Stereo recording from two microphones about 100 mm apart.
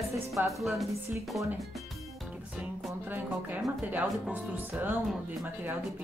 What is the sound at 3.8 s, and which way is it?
Speech, 15° right (ahead or behind).